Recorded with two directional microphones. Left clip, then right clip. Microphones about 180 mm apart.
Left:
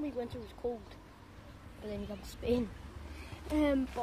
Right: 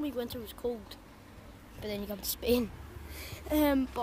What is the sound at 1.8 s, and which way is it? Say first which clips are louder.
Speech: right 5 dB; 15° right (ahead or behind).